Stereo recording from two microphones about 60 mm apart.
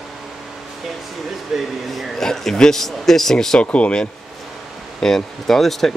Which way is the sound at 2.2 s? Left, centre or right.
Centre.